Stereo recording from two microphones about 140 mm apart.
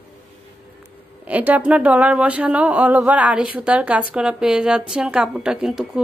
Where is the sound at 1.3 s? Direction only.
10° right (ahead or behind).